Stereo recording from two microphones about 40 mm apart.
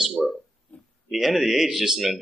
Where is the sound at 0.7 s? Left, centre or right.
Left.